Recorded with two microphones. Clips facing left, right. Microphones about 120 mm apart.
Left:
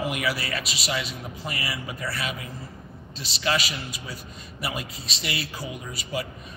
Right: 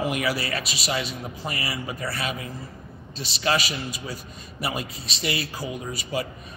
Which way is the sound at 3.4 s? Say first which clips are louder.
Right 2 dB; 40° right (ahead or behind).